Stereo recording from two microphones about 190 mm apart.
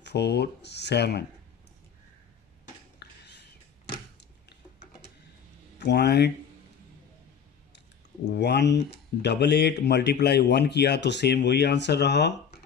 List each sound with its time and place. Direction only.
0.0 s speech: 60° left (ahead or behind)
3.0 s a sound: 60° left (ahead or behind)
5.9 s speech: 60° left (ahead or behind)
8.3 s speech: 65° left (ahead or behind)